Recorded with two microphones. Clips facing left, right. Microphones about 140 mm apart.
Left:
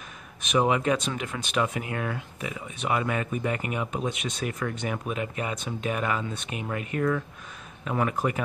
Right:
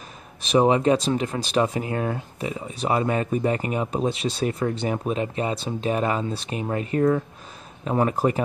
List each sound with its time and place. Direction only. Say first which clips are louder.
0.4 s speech: right 5 dB; 30° right (ahead or behind)